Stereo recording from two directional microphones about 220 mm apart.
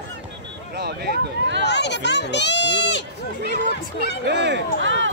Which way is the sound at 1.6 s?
50° left (ahead or behind).